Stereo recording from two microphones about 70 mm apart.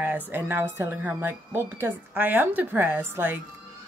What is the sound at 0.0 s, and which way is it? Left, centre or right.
A woman's voice, right.